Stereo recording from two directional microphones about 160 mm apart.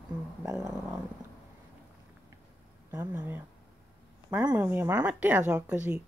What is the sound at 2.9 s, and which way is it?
Speech, 15° right (ahead or behind).